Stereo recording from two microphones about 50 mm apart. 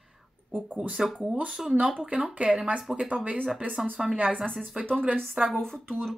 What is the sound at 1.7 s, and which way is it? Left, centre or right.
Speech, right.